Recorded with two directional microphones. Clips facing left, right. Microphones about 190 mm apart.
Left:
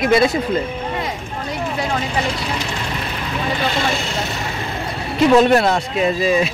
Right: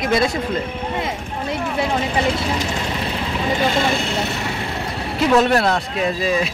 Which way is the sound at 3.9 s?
60° right (ahead or behind).